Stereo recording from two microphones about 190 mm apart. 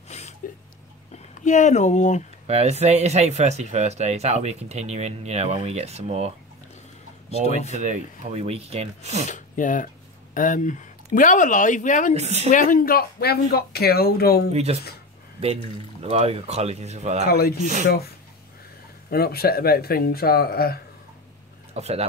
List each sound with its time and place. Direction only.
0.4 s speech: 45° left (ahead or behind)
2.4 s speech: 35° right (ahead or behind)
7.2 s speech: 35° left (ahead or behind)
7.8 s speech: 35° right (ahead or behind)
9.3 s speech: 45° left (ahead or behind)
12.2 s speech: 35° right (ahead or behind)
12.4 s speech: 45° left (ahead or behind)
14.5 s speech: 35° right (ahead or behind)
17.3 s speech: 55° left (ahead or behind)
21.7 s speech: 35° right (ahead or behind)